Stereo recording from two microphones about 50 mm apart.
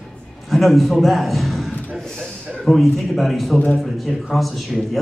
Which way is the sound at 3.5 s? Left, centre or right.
Left.